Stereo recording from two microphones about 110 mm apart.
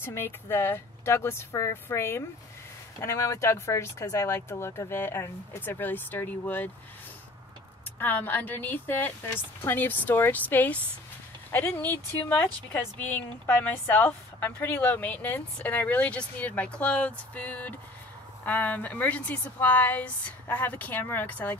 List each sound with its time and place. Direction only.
0.0 s speech: 20° left (ahead or behind)
8.0 s speech: 15° left (ahead or behind)